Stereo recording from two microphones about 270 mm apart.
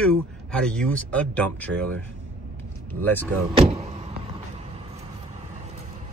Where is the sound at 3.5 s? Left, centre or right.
Right.